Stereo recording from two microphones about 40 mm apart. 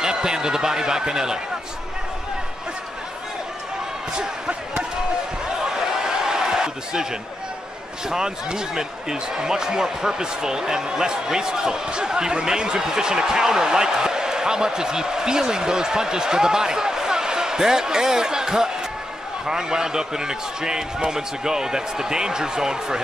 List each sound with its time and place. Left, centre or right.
0.0 s speech: centre
5.6 s a sound: centre
8.1 s speech: centre